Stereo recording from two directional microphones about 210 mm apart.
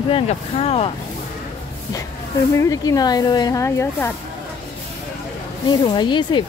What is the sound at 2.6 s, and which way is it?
Speech, 15° left (ahead or behind).